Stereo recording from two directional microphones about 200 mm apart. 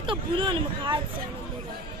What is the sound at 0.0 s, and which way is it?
Speech, 25° right (ahead or behind).